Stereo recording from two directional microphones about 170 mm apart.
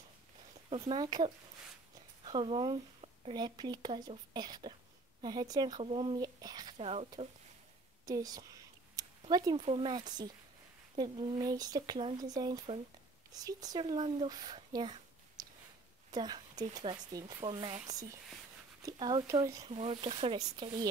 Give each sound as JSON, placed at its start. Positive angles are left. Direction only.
{"t": 0.7, "sound": "speech", "side_deg": -30}
{"t": 5.8, "sound": "speech", "side_deg": -35}
{"t": 6.2, "sound": "a sound", "side_deg": -25}
{"t": 6.8, "sound": "speech", "side_deg": -35}
{"t": 8.0, "sound": "a woman's voice", "side_deg": -20}
{"t": 9.0, "sound": "a sound", "side_deg": -20}
{"t": 9.3, "sound": "speech", "side_deg": -25}
{"t": 18.8, "sound": "speech", "side_deg": -20}
{"t": 19.6, "sound": "speech", "side_deg": -35}